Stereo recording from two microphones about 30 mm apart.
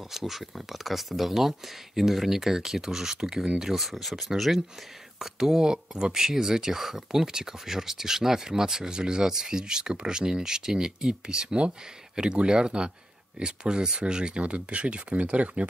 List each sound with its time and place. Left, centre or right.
0.1 s speech: centre
3.7 s speech: centre
5.2 s speech: centre
5.6 s speech: right
14.4 s speech: right